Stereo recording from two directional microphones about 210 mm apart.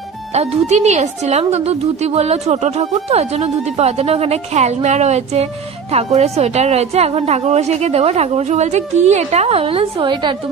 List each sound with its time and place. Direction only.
0.3 s a woman's voice: 30° right (ahead or behind)